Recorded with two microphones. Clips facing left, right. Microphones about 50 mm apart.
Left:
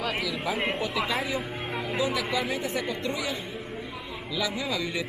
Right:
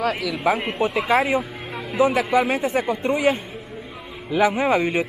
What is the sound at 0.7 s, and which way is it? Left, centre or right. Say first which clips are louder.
Speech: right 7 dB; right.